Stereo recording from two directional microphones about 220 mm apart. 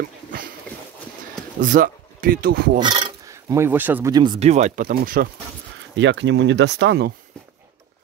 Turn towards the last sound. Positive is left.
turn(degrees=-50)  # may be behind; listen again after turning